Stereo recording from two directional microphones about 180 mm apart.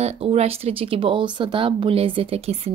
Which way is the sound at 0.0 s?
35° right (ahead or behind).